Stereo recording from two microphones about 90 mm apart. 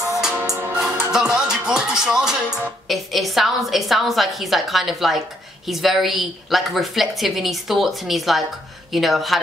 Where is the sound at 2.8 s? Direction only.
Centre (ahead or behind).